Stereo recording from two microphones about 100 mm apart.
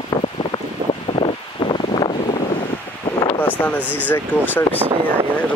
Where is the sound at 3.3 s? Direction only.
20° left (ahead or behind).